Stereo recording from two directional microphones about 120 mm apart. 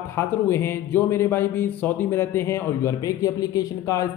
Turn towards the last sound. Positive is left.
turn(degrees=30)  # may be behind; listen again after turning